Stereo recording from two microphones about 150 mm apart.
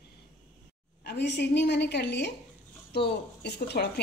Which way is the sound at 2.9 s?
90° left.